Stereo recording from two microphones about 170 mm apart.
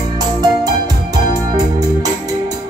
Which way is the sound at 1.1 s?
20° right (ahead or behind).